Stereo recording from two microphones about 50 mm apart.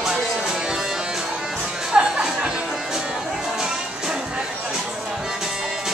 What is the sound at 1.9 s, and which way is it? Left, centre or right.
Music, centre.